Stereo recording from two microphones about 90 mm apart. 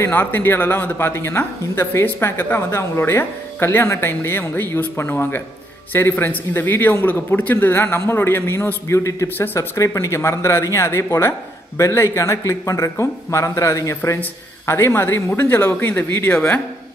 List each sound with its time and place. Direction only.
0.0 s speech: 25° left (ahead or behind)